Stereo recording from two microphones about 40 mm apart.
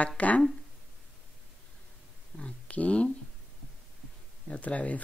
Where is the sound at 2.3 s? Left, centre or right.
Left.